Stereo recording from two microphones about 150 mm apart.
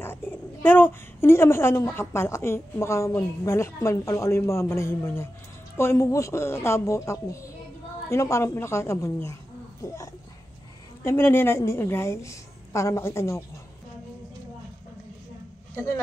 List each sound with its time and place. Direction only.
0.0 s a woman's voice: 15° left (ahead or behind)
11.1 s a woman's voice: 15° left (ahead or behind)
15.7 s speech: 20° left (ahead or behind)